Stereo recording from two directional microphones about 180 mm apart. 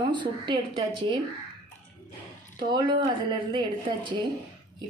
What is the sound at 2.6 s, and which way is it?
A woman's voice, 25° right (ahead or behind).